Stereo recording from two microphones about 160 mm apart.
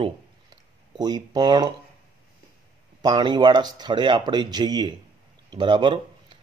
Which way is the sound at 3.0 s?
25° right (ahead or behind).